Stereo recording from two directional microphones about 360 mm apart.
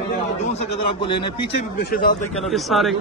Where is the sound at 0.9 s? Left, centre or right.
Centre.